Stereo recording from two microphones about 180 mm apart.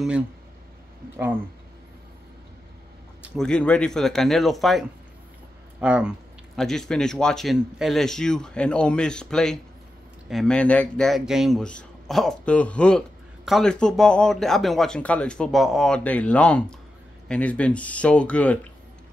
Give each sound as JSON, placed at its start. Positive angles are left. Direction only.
{"t": 1.1, "sound": "speech", "side_deg": -10}
{"t": 3.2, "sound": "speech", "side_deg": 5}